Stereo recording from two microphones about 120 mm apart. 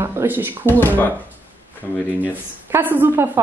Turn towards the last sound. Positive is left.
turn(degrees=-15)  # may be behind; listen again after turning